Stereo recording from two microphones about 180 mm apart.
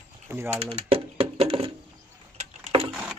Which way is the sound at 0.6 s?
30° right (ahead or behind).